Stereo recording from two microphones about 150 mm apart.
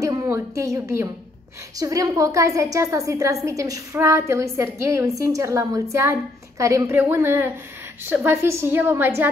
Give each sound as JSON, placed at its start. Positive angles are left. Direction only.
{"t": 0.0, "sound": "a woman's voice", "side_deg": -20}